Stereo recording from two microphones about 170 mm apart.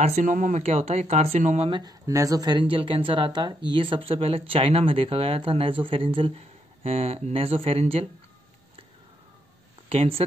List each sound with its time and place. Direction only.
0.0 s a woman's voice: 45° right (ahead or behind)
1.7 s a woman's voice: 25° right (ahead or behind)
9.8 s speech: 35° right (ahead or behind)